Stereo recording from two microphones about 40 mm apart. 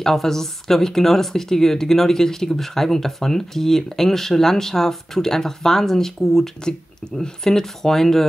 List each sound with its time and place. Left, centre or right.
0.0 s speech: centre